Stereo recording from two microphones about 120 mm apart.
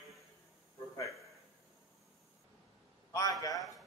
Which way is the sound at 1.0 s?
Centre (ahead or behind).